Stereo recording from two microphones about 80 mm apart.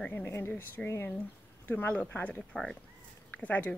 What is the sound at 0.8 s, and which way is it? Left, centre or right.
Speech, left.